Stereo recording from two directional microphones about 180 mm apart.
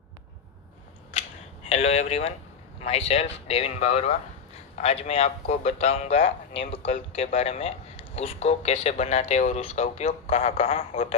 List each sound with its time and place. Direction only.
1.1 s cap gun: 35° left (ahead or behind)
2.8 s a man's voice: 35° left (ahead or behind)